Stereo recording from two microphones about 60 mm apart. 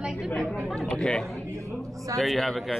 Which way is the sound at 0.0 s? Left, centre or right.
Centre.